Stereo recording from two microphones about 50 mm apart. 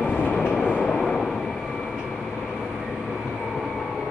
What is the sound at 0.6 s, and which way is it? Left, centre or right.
Train, centre.